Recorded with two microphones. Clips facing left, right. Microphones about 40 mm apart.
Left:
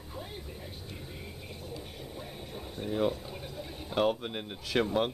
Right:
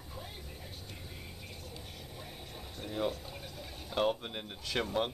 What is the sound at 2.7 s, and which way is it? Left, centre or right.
Speech, centre.